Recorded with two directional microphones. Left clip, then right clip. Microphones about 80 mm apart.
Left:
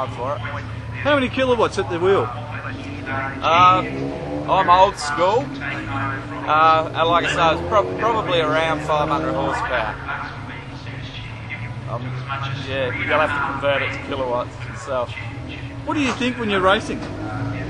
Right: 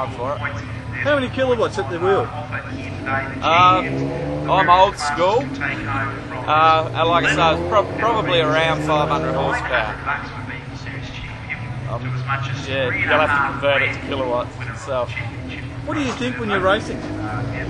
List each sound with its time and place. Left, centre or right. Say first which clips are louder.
0.0 s speech: right 1 dB; centre
1.1 s speech: left 1 dB; centre
3.4 s speech: even; centre
6.4 s speech: even; centre
12.7 s speech: right 2 dB; centre
15.9 s speech: left 2 dB; centre